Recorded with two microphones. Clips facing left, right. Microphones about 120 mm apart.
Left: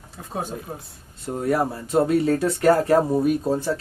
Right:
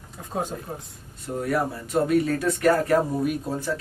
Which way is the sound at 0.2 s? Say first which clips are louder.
Right 1 dB; centre (ahead or behind).